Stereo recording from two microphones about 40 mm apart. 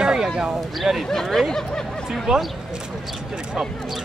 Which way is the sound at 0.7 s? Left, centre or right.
Centre.